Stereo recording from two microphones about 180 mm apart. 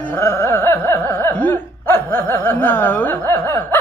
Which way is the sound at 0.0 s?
10° left (ahead or behind).